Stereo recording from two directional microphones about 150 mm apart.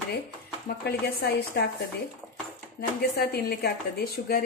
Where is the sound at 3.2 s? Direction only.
90° left.